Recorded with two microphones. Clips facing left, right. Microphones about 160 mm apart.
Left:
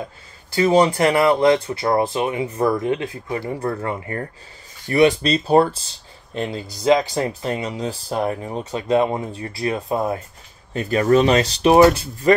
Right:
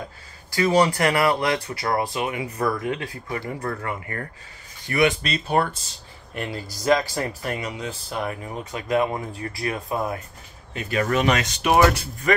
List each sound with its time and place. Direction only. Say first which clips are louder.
0.6 s speech: left 4 dB; 25° left (ahead or behind)
6.3 s speech: left 5 dB; 20° left (ahead or behind)
10.7 s speech: left 7 dB; 35° left (ahead or behind)